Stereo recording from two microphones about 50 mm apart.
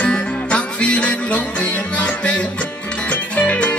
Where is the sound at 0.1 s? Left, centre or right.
Left.